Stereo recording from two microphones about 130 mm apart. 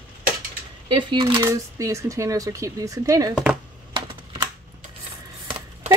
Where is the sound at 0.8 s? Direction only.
40° right (ahead or behind).